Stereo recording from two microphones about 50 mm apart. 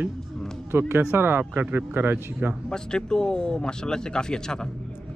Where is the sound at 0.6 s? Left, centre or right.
Right.